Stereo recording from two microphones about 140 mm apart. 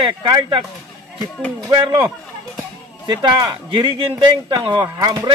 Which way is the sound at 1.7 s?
30° right (ahead or behind).